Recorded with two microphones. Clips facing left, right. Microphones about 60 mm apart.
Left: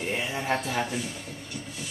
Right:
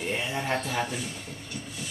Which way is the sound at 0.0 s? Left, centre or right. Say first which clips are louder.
Even; centre.